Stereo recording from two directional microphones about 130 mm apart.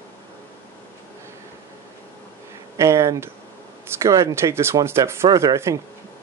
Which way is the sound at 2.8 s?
25° right (ahead or behind).